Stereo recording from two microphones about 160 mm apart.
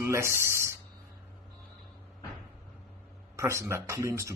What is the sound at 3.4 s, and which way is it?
Speech, 15° right (ahead or behind).